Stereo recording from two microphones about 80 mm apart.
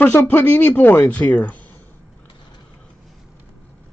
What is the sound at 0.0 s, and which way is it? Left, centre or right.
Speech, left.